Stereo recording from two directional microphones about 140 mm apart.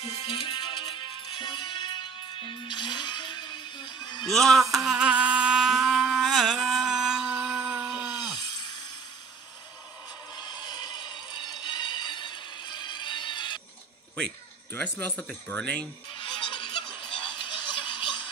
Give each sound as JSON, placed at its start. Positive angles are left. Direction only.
{"t": 0.0, "sound": "music", "side_deg": 50}
{"t": 4.3, "sound": "insect", "side_deg": 0}
{"t": 7.4, "sound": "a sound", "side_deg": -10}
{"t": 10.3, "sound": "music", "side_deg": 30}
{"t": 14.7, "sound": "speech", "side_deg": 10}
{"t": 16.2, "sound": "music", "side_deg": 35}
{"t": 17.5, "sound": "a sound", "side_deg": 35}